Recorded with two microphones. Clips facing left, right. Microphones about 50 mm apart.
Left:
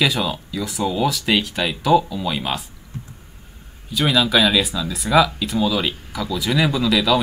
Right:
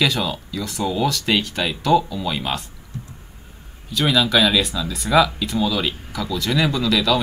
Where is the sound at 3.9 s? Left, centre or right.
Centre.